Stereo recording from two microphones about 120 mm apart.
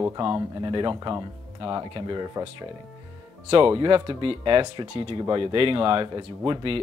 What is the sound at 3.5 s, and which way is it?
Speech, 45° right (ahead or behind).